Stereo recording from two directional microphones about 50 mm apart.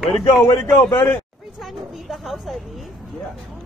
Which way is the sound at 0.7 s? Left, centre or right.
Left.